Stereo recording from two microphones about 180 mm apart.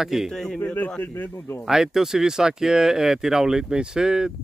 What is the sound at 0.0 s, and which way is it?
A man's voice, centre (ahead or behind).